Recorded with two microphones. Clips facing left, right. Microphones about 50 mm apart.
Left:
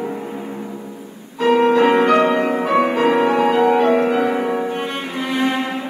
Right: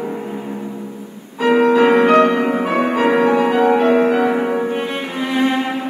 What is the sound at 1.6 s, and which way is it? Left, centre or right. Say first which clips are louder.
Music: right 2 dB; centre.